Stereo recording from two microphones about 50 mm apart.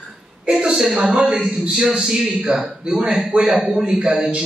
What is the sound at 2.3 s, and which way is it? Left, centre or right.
A man's voice, right.